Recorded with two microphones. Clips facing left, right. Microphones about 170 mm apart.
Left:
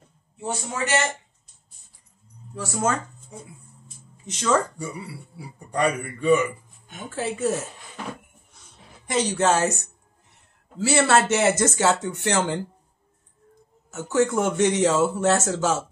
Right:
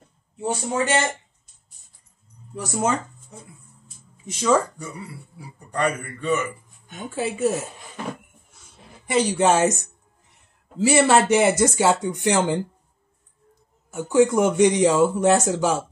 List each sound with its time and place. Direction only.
0.4 s a man's voice: 30° right (ahead or behind)
2.5 s a man's voice: 15° right (ahead or behind)
3.8 s a sound: 10° right (ahead or behind)
5.7 s a man's voice: 10° left (ahead or behind)
7.1 s a man's voice: 10° right (ahead or behind)
9.0 s a man's voice: 10° right (ahead or behind)
13.8 s a man's voice: 15° right (ahead or behind)